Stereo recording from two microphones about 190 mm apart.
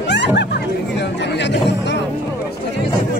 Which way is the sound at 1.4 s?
65° left (ahead or behind).